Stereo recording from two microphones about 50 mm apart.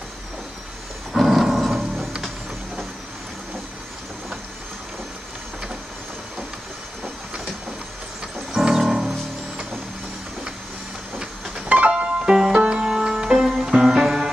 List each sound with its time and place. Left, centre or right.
1.1 s music: centre
2.2 s vehicle: centre
8.5 s music: centre
11.9 s music: right